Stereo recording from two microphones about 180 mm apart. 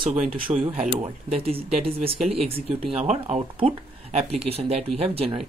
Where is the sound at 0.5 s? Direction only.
20° right (ahead or behind).